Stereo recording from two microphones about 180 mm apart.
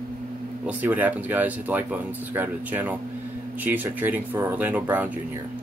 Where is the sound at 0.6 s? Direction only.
10° right (ahead or behind).